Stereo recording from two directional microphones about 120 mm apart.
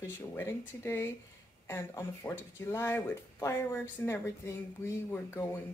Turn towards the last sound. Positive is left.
turn(degrees=20)  # may be behind; listen again after turning